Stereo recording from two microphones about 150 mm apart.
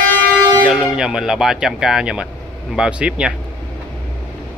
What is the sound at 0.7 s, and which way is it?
Speech, 5° right (ahead or behind).